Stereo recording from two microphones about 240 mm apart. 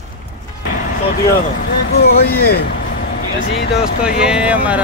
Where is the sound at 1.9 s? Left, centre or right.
Left.